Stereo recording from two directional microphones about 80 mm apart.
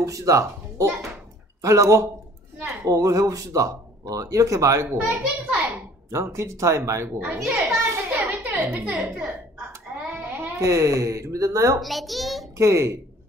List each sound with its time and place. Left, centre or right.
0.0 s speech: right
4.9 s a child's voice: centre
6.0 s a woman's voice: right
7.6 s a sound: right
8.3 s a woman's voice: right
10.1 s speech: right
11.8 s a child's voice: centre
12.5 s a woman's voice: right